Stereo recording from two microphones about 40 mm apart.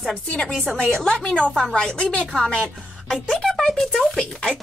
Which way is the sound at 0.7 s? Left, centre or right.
Centre.